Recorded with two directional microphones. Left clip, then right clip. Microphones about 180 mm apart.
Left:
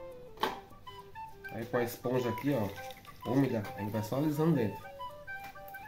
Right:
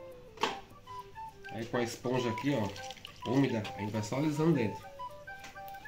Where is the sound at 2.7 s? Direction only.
10° right (ahead or behind).